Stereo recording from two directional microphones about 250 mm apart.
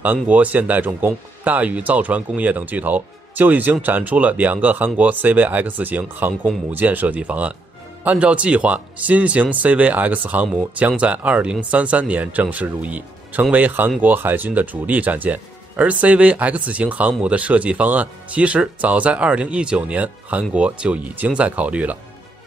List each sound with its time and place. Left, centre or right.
0.0 s speech: centre